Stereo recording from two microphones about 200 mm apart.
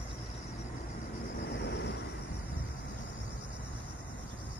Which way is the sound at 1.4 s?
60° left (ahead or behind).